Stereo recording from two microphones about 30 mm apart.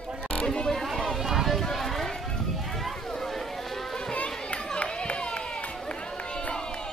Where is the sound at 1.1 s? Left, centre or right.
Centre.